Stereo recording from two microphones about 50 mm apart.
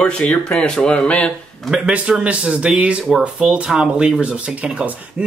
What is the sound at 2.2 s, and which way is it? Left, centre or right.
Speech, right.